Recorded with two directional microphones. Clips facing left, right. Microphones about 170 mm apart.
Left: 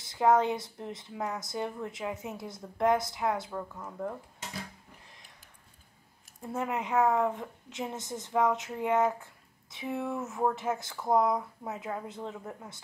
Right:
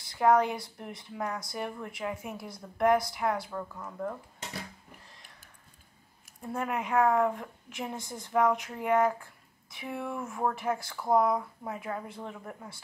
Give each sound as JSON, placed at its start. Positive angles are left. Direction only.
{"t": 0.0, "sound": "a woman's voice", "side_deg": 20}
{"t": 3.5, "sound": "speech", "side_deg": 10}
{"t": 6.4, "sound": "a woman's voice", "side_deg": 20}